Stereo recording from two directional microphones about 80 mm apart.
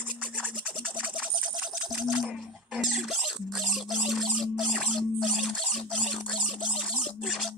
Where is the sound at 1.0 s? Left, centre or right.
Centre.